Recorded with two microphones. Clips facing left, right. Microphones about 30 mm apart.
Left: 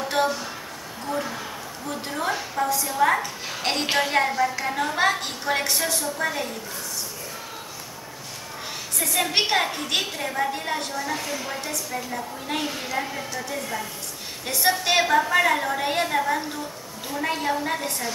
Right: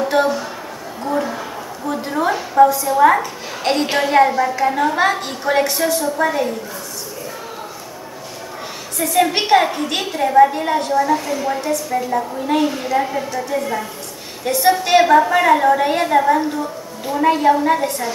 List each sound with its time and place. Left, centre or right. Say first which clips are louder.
0.1 s a sound: right 7 dB; centre
2.7 s a woman's voice: right 8 dB; centre
8.9 s a woman's voice: right 7 dB; centre
14.4 s a woman's voice: right 8 dB; centre